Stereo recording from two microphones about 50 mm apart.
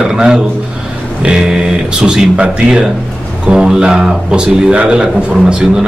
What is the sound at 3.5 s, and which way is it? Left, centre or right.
A man's voice, centre.